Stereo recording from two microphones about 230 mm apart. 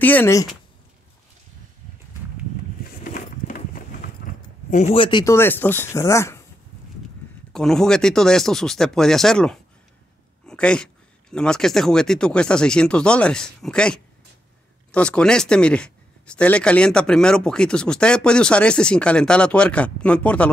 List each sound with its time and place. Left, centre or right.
0.0 s speech: centre
3.0 s a sound: left
4.6 s speech: left; by 6.4 s centre
7.5 s speech: centre